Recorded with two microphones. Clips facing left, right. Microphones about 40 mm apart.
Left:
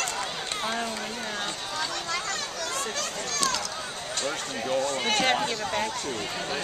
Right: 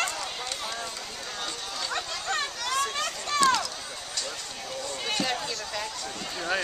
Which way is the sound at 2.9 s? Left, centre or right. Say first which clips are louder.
Right 2 dB; right.